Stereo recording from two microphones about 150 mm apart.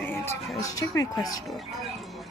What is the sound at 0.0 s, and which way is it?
Music, 15° left (ahead or behind).